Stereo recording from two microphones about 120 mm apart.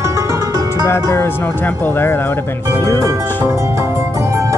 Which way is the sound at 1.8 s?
20° left (ahead or behind).